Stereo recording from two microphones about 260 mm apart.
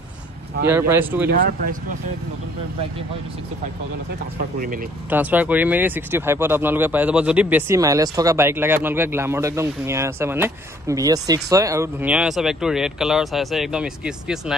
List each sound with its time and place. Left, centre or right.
0.7 s speech: centre
1.3 s speech: right
5.1 s speech: centre